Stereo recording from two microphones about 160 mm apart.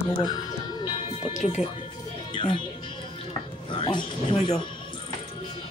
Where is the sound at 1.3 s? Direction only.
45° left (ahead or behind).